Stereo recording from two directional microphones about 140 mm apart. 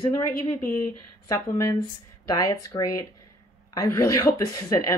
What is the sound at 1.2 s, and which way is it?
A woman's voice, 20° left (ahead or behind).